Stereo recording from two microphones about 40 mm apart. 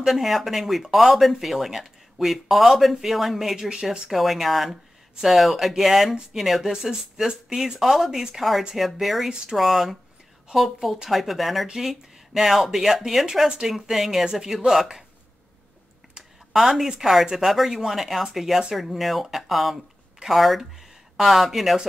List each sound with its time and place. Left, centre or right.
0.0 s speech: centre
3.5 s speech: centre
4.1 s speech: centre
6.7 s speech: centre
16.5 s speech: centre